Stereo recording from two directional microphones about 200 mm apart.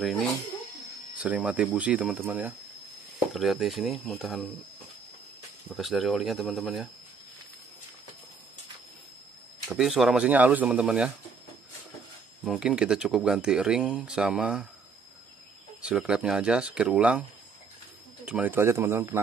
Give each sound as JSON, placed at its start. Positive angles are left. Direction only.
{"t": 0.0, "sound": "speech", "side_deg": 0}
{"t": 5.7, "sound": "speech", "side_deg": 0}
{"t": 9.7, "sound": "speech", "side_deg": 0}
{"t": 12.4, "sound": "speech", "side_deg": -5}
{"t": 15.8, "sound": "speech", "side_deg": -5}
{"t": 18.2, "sound": "speech", "side_deg": -10}